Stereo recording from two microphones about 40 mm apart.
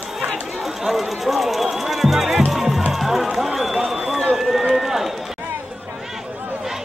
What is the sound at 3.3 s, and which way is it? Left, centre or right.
Run, centre.